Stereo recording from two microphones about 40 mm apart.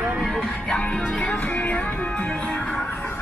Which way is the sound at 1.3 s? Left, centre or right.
Left.